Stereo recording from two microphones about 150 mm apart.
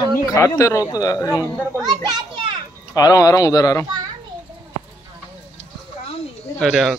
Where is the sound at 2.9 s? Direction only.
25° left (ahead or behind).